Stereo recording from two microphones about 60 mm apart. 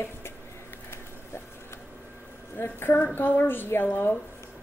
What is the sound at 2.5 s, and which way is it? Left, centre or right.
A woman's voice, left.